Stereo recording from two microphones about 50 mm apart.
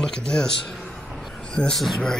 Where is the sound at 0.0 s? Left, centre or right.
Centre.